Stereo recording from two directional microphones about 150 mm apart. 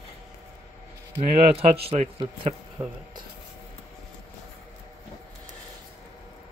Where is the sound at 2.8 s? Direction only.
20° right (ahead or behind).